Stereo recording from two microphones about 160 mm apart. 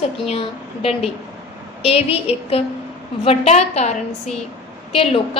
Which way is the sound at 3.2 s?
40° left (ahead or behind).